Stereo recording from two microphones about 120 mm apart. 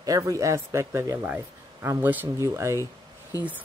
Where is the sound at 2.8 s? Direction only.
30° left (ahead or behind).